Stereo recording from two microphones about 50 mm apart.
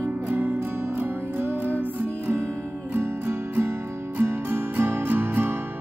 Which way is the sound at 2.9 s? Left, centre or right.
Right.